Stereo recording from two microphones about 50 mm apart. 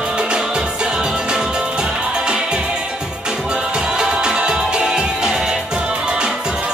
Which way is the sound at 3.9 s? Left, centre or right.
Centre.